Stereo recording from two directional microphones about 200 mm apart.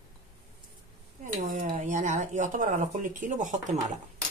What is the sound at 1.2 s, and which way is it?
Dishes, 40° right (ahead or behind).